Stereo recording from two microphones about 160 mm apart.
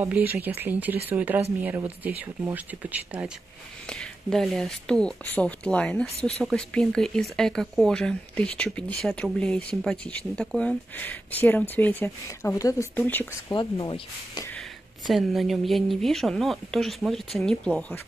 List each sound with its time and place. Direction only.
0.0 s speech: 10° right (ahead or behind)
3.9 s speech: 5° left (ahead or behind)
13.5 s speech: 25° left (ahead or behind)
15.0 s speech: centre (ahead or behind)